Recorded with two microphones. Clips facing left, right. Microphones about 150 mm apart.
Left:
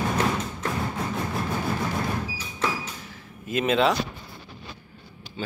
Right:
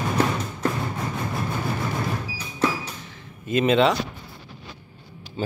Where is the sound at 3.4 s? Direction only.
Centre (ahead or behind).